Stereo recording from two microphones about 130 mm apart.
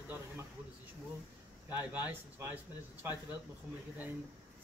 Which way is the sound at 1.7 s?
15° right (ahead or behind).